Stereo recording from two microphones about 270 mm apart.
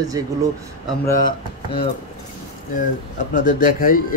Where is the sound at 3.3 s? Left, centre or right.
Left.